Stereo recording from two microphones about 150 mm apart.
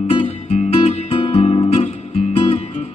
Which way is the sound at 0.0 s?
40° left (ahead or behind).